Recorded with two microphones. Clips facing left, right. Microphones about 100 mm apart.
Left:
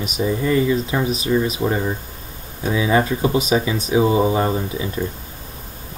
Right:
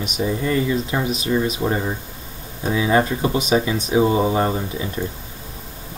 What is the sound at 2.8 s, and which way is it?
Speech, 15° left (ahead or behind).